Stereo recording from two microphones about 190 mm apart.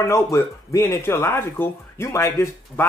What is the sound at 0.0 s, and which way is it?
A man's voice, 15° left (ahead or behind).